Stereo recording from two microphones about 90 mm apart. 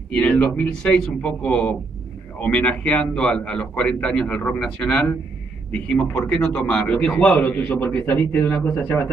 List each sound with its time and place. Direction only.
0.1 s a man's voice: 10° left (ahead or behind); by 9.1 s 25° left (ahead or behind)